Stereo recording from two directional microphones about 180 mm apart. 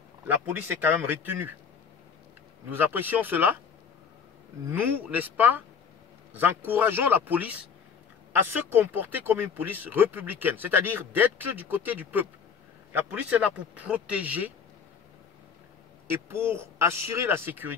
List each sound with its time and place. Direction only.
0.3 s speech: 10° right (ahead or behind)
2.7 s speech: 10° right (ahead or behind)
4.6 s speech: 10° right (ahead or behind)
16.1 s speech: 15° right (ahead or behind)